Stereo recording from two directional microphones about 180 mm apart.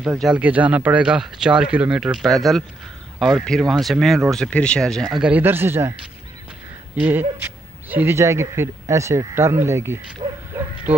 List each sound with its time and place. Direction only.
0.0 s speech: 5° right (ahead or behind)
7.0 s speech: 10° right (ahead or behind)
10.2 s bow-wow: 30° right (ahead or behind)